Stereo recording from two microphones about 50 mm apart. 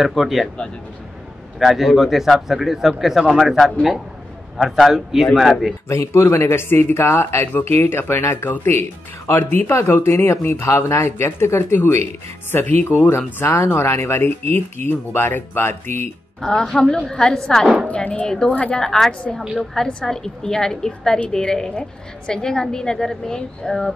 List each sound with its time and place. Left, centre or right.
0.0 s a man's voice: centre
1.6 s a man's voice: centre
5.9 s speech: left
7.5 s speech: left
13.6 s speech: left
16.3 s a woman's voice: centre
17.8 s speech: left
18.2 s a woman's voice: centre
18.5 s speech: left
18.8 s a woman's voice: centre